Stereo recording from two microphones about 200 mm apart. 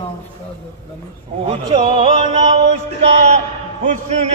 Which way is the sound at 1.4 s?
30° right (ahead or behind).